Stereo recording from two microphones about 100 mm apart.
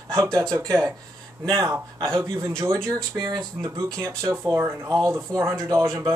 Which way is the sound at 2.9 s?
40° right (ahead or behind).